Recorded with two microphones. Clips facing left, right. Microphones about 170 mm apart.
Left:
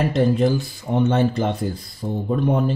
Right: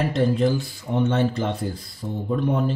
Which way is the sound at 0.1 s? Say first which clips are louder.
Left 2 dB; 50° left (ahead or behind).